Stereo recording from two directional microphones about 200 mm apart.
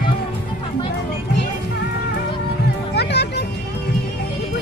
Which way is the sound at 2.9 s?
55° left (ahead or behind).